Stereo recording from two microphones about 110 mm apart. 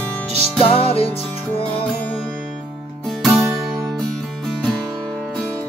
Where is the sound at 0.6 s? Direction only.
60° left (ahead or behind).